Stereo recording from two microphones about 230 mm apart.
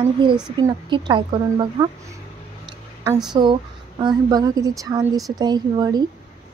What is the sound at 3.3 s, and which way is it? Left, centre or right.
A woman's voice, right.